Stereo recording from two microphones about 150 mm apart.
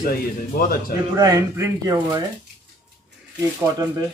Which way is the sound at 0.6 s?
70° left (ahead or behind).